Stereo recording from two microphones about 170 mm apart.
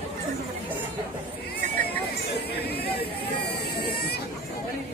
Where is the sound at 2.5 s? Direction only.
70° left (ahead or behind).